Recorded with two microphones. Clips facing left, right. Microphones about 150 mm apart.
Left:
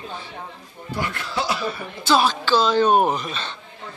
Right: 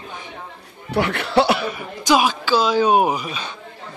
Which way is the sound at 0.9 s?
65° right (ahead or behind).